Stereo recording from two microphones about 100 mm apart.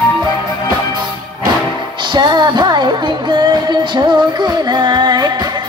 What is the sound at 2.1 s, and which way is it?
Music, 45° right (ahead or behind).